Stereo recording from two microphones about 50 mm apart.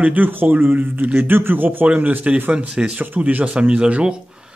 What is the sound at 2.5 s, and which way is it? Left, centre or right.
Speech, centre.